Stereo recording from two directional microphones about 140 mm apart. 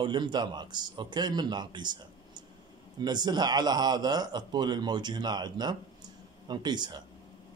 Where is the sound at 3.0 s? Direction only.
30° right (ahead or behind).